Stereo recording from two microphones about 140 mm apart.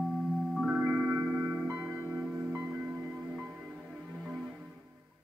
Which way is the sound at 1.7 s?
20° right (ahead or behind).